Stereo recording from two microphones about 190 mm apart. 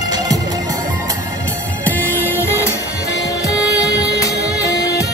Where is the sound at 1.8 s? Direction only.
10° left (ahead or behind).